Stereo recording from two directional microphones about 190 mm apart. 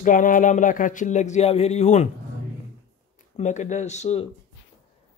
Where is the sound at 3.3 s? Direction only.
40° left (ahead or behind).